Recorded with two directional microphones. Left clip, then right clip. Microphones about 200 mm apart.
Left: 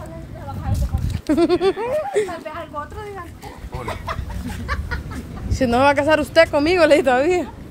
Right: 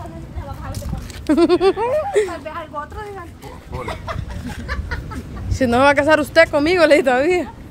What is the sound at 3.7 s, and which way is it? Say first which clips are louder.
Speech: right 1 dB; 10° left (ahead or behind).